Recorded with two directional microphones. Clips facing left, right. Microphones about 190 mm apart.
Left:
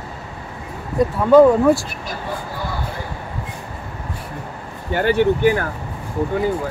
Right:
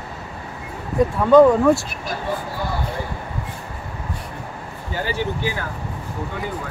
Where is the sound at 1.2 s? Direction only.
5° left (ahead or behind).